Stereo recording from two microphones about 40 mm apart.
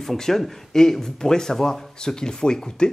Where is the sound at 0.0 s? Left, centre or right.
Centre.